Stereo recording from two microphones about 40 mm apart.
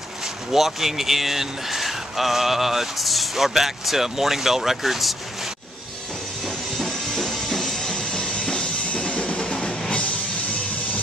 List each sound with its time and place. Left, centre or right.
0.5 s speech: centre
7.2 s music: centre; by 10.0 s left